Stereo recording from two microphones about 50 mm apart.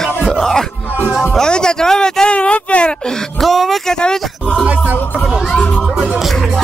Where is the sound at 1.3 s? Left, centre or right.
Centre.